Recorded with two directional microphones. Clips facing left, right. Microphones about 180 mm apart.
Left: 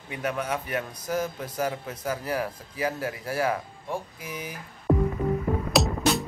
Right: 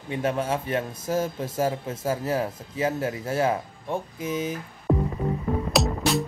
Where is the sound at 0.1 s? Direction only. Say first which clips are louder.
Right 4 dB; 30° right (ahead or behind).